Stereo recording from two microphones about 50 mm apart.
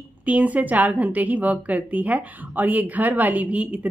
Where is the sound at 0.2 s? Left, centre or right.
Right.